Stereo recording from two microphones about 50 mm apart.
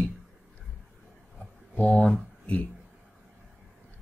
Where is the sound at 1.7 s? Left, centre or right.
Left.